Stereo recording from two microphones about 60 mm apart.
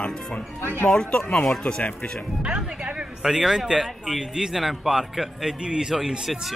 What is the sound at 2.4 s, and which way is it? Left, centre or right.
Speech, centre.